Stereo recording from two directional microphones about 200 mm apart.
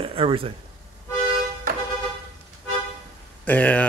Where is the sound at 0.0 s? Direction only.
25° right (ahead or behind).